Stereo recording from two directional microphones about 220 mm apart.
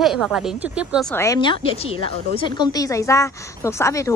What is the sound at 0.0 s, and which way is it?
Speech, centre (ahead or behind).